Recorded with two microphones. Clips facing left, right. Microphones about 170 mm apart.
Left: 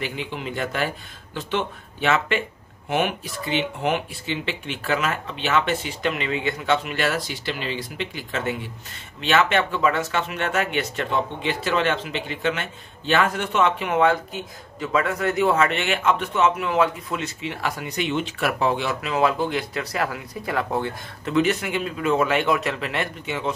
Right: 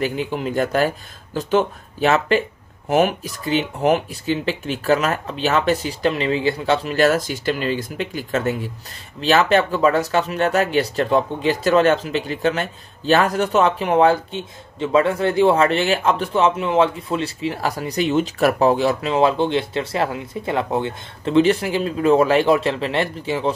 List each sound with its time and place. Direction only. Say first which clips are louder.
0.0 s speech: right 7 dB; 45° right (ahead or behind)